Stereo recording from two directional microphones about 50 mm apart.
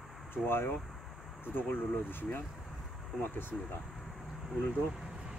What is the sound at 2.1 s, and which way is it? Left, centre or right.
Speech, left.